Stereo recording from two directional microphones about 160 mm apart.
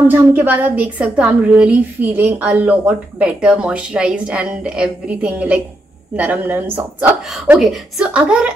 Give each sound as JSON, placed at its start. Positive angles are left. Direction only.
{"t": 0.1, "sound": "a woman's voice", "side_deg": -10}
{"t": 7.4, "sound": "a woman's voice", "side_deg": 0}